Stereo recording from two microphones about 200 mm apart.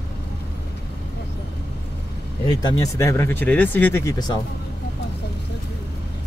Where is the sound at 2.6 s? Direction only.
20° left (ahead or behind).